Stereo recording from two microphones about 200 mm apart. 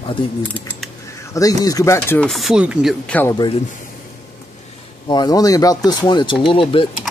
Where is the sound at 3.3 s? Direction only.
25° left (ahead or behind).